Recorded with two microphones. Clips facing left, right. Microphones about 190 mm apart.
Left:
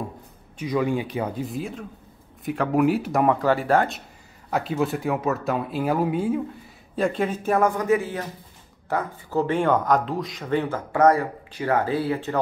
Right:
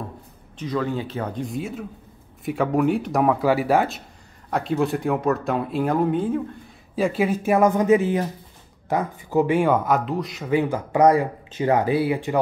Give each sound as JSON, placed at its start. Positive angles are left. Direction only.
{"t": 0.6, "sound": "speech", "side_deg": 10}
{"t": 7.0, "sound": "speech", "side_deg": -5}